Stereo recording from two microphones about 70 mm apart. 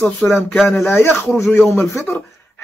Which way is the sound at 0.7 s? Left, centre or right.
Left.